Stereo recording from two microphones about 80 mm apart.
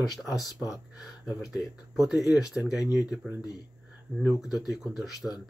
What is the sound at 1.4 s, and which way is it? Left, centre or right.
Speech, left.